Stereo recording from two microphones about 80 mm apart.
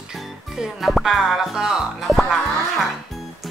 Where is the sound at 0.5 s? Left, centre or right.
Centre.